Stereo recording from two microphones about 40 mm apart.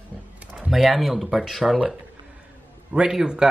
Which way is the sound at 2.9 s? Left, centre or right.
Right.